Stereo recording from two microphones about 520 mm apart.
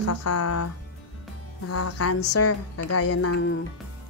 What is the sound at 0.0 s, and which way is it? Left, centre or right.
Music, left.